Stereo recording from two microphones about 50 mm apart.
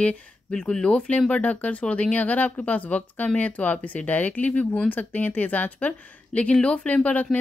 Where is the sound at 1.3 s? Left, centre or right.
Left.